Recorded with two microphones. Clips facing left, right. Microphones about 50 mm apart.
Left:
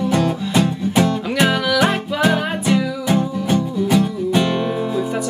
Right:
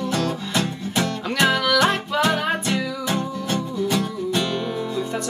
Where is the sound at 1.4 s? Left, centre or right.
Centre.